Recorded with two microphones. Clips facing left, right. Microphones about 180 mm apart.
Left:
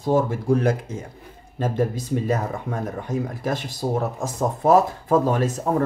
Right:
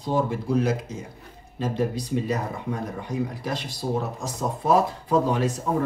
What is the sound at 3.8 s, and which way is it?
Speech, 55° left (ahead or behind).